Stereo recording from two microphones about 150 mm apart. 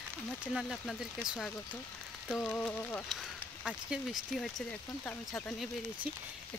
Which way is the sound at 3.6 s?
5° right (ahead or behind).